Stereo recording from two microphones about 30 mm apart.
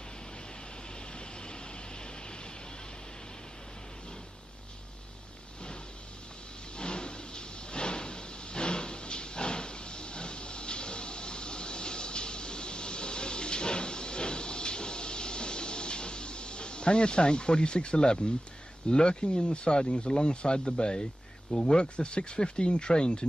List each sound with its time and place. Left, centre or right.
1.1 s vehicle: left
6.8 s a sound: left
18.9 s speech: left